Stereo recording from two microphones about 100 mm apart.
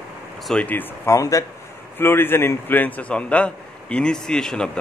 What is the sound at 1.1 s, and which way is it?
Speech, 35° left (ahead or behind).